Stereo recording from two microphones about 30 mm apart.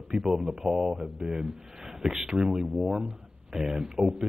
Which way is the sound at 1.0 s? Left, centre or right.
Right.